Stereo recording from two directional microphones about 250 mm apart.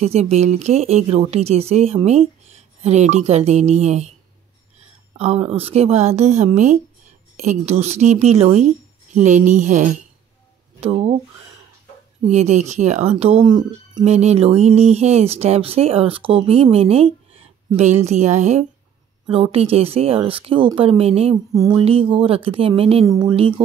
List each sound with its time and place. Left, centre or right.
0.0 s speech: right
5.1 s speech: right
12.3 s speech: right